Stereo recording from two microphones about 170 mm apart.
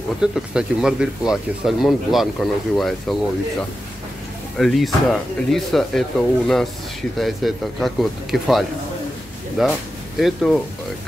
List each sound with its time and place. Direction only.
0.2 s speech: 5° right (ahead or behind)
4.6 s speech: centre (ahead or behind)